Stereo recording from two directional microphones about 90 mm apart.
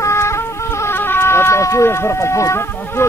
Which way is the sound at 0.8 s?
25° left (ahead or behind).